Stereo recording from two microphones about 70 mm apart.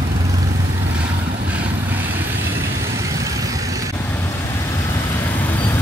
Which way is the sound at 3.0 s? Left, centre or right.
Right.